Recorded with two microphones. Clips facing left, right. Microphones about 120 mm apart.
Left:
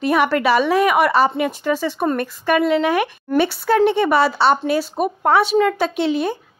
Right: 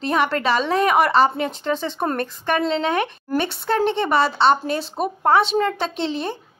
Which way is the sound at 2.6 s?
10° left (ahead or behind).